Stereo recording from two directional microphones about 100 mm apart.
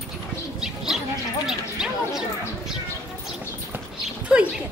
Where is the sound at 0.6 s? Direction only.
5° right (ahead or behind).